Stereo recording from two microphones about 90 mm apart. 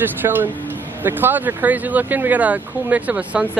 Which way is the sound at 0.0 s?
20° right (ahead or behind).